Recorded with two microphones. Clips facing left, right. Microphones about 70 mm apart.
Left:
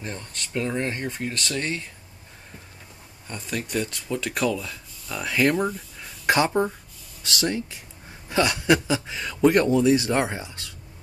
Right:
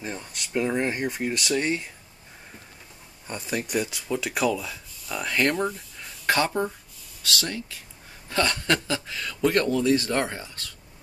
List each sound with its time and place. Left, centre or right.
0.0 s speech: centre
3.3 s speech: centre
6.2 s speech: centre